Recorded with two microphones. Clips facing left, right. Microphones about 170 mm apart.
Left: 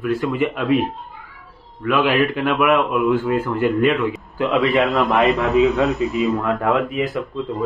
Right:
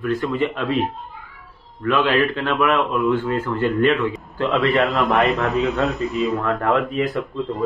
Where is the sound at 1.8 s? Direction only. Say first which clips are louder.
Left 1 dB; 10° left (ahead or behind).